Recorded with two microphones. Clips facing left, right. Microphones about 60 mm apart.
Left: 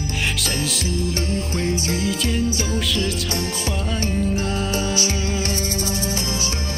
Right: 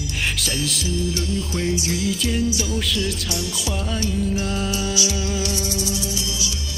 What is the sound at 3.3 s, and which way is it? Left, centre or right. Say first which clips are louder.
Music: left 2 dB; left.